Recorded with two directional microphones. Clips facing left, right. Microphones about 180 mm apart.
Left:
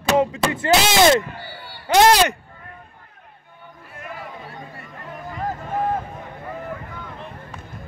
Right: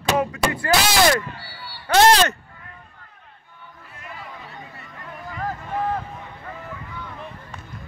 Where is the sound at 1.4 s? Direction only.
50° left (ahead or behind).